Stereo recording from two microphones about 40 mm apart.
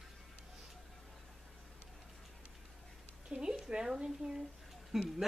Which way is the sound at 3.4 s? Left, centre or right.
Centre.